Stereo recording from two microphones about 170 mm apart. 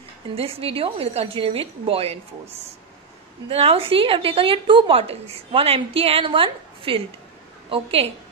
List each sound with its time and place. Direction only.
0.4 s a woman's voice: 35° right (ahead or behind)
3.4 s a woman's voice: 35° right (ahead or behind)